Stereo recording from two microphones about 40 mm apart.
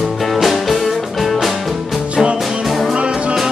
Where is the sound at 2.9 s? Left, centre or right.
Right.